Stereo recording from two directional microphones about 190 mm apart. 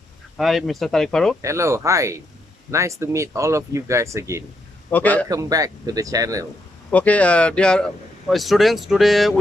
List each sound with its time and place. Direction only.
0.4 s speech: centre (ahead or behind)
1.4 s speech: 15° right (ahead or behind)
4.9 s a man's voice: 10° left (ahead or behind)
5.3 s speech: 15° right (ahead or behind)
6.9 s speech: 5° left (ahead or behind)